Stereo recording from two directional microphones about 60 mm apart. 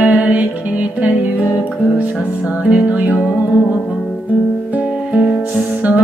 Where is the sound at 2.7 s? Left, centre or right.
Right.